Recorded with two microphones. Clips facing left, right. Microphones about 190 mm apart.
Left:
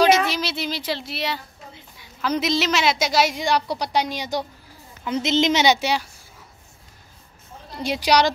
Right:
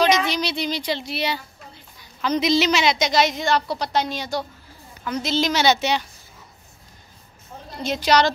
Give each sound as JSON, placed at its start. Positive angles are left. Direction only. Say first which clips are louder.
{"t": 0.0, "sound": "a woman's voice", "louder": "left 2 dB", "side_deg": 5}
{"t": 7.8, "sound": "a woman's voice", "louder": "even", "side_deg": 15}